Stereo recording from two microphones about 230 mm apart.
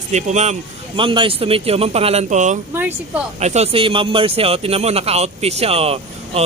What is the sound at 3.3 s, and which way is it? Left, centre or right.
Speech, right.